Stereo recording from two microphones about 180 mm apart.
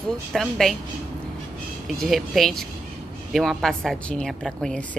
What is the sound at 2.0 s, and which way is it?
A woman's voice, centre (ahead or behind).